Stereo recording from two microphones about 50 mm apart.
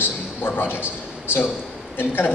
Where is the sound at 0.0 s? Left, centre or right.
Left.